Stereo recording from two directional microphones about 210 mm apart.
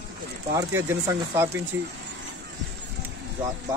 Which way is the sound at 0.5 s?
15° right (ahead or behind).